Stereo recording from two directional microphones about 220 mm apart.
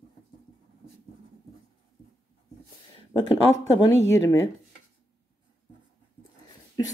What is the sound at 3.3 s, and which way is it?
Speech, 20° left (ahead or behind).